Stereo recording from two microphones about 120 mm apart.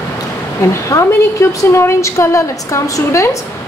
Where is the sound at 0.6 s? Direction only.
25° left (ahead or behind).